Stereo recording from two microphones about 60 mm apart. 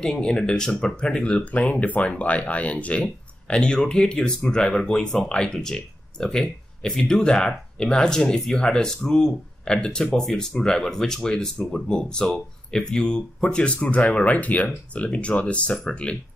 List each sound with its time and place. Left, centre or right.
0.0 s speech: centre